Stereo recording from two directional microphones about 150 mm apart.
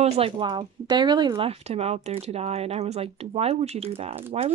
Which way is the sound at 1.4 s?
40° right (ahead or behind).